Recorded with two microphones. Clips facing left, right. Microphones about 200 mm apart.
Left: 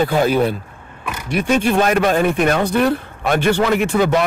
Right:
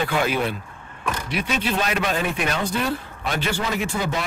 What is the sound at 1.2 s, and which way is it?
Speech, 50° left (ahead or behind).